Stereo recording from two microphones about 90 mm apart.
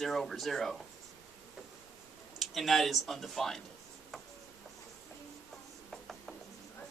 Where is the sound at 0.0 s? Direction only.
Centre (ahead or behind).